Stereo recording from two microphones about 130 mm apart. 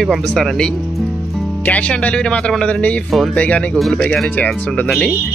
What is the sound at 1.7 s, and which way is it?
Speech, 10° left (ahead or behind).